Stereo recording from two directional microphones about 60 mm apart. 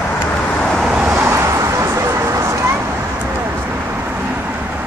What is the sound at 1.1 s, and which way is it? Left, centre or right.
Vehicle, right.